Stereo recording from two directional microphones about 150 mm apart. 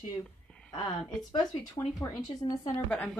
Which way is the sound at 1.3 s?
25° left (ahead or behind).